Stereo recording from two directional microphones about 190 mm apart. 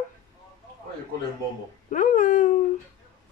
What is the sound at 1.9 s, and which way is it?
Speech, 40° left (ahead or behind).